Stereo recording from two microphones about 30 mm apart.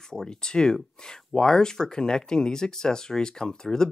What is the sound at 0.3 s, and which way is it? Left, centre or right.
Speech, left.